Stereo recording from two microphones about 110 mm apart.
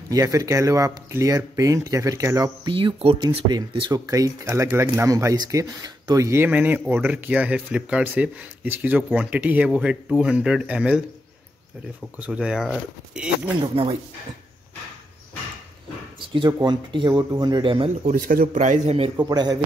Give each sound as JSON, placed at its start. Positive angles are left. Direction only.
{"t": 0.1, "sound": "speech", "side_deg": -30}
{"t": 2.6, "sound": "speech", "side_deg": -50}
{"t": 3.9, "sound": "speech", "side_deg": -30}
{"t": 12.2, "sound": "speech", "side_deg": -10}
{"t": 13.6, "sound": "speech", "side_deg": -55}
{"t": 16.5, "sound": "a man's voice", "side_deg": -40}
{"t": 17.6, "sound": "speech", "side_deg": -55}
{"t": 18.0, "sound": "a man's voice", "side_deg": -90}
{"t": 19.1, "sound": "a man's voice", "side_deg": -40}